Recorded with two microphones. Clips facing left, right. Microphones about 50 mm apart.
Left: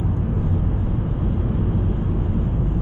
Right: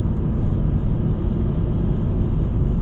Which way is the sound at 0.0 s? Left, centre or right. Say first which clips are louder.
Even; centre.